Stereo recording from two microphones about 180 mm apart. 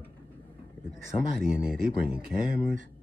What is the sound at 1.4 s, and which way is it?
Speech, 5° right (ahead or behind).